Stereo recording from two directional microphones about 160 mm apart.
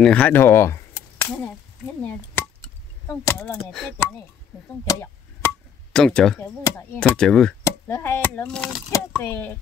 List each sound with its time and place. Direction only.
0.0 s speech: 5° left (ahead or behind)
2.4 s chop: 15° left (ahead or behind)
3.1 s speech: 15° left (ahead or behind)
4.8 s chop: 15° left (ahead or behind)
5.9 s speech: 5° left (ahead or behind)
6.4 s speech: 15° left (ahead or behind)
7.0 s speech: 5° left (ahead or behind)
7.6 s speech: 15° left (ahead or behind)